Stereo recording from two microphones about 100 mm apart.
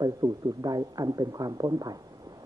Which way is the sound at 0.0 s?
40° right (ahead or behind).